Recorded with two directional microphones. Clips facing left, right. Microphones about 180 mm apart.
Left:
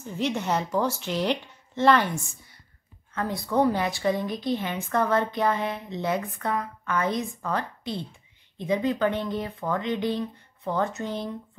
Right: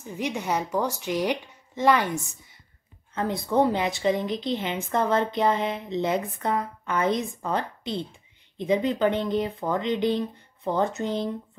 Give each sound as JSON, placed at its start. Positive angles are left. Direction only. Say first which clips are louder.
{"t": 0.0, "sound": "a woman's voice", "louder": "left 2 dB", "side_deg": -15}
{"t": 3.2, "sound": "a woman's voice", "louder": "right 1 dB", "side_deg": -25}